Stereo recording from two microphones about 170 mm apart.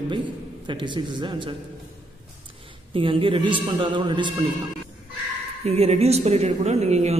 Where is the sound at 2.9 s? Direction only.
30° right (ahead or behind).